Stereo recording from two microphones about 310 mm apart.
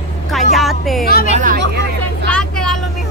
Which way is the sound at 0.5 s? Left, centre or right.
Centre.